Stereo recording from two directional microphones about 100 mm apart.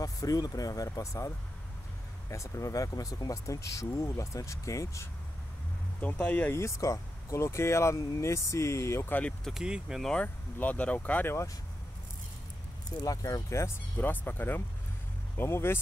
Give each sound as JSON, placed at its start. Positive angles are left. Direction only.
{"t": 0.0, "sound": "speech", "side_deg": 35}
{"t": 5.9, "sound": "speech", "side_deg": 15}
{"t": 6.5, "sound": "speech", "side_deg": 30}
{"t": 9.1, "sound": "speech", "side_deg": 10}
{"t": 9.5, "sound": "speech", "side_deg": -5}
{"t": 10.0, "sound": "speech", "side_deg": 15}
{"t": 13.0, "sound": "speech", "side_deg": 35}